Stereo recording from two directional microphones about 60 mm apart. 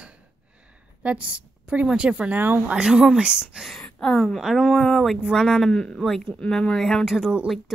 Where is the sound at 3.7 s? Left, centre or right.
Centre.